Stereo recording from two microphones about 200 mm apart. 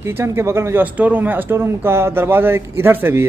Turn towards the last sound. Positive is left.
turn(degrees=-10)  # may be behind; listen again after turning